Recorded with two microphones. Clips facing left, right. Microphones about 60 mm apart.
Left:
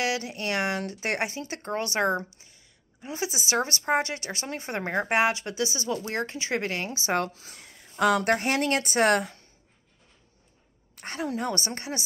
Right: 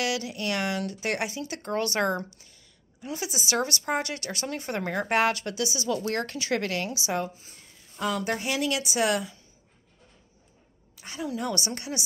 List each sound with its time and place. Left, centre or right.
0.0 s speech: left
7.2 s speech: left
8.0 s a woman's voice: left
11.0 s a woman's voice: left